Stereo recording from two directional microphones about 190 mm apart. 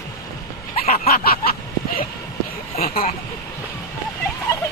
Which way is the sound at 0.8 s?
50° left (ahead or behind).